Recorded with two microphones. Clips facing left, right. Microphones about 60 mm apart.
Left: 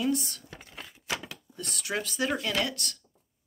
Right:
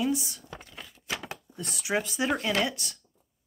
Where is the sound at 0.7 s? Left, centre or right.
Centre.